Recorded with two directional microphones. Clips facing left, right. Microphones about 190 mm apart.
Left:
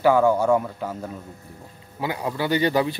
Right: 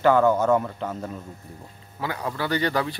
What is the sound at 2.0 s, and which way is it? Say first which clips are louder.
Speech: left 3 dB; 15° left (ahead or behind).